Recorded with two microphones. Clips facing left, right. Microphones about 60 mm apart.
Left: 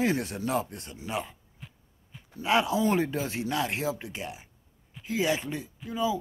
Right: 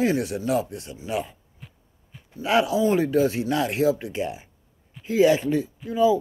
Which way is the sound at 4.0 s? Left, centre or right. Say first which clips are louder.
Right 9 dB; right.